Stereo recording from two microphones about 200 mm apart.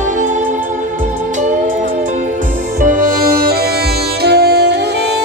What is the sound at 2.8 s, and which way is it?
Music, 45° right (ahead or behind).